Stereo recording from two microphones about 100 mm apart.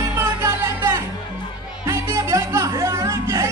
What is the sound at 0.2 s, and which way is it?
Music, 30° right (ahead or behind).